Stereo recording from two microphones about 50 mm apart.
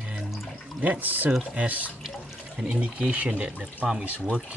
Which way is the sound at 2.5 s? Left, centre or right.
Centre.